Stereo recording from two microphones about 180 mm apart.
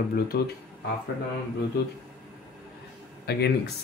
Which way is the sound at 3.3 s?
65° left (ahead or behind).